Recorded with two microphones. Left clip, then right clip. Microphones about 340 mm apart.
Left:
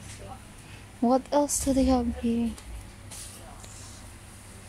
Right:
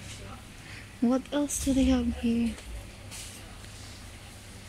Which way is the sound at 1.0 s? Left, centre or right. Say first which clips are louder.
Left 5 dB; centre.